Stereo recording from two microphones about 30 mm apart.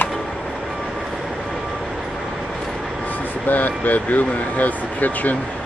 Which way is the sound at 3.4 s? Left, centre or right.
Left.